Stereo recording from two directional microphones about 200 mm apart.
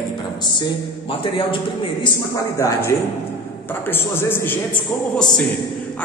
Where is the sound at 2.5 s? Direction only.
15° left (ahead or behind).